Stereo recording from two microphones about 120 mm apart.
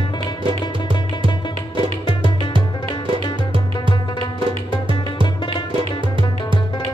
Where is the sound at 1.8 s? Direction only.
40° left (ahead or behind).